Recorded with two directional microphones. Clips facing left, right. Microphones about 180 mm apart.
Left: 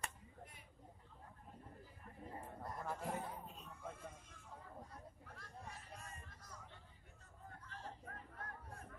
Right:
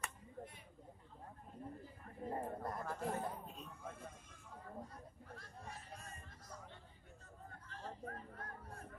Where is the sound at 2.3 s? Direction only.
60° right (ahead or behind).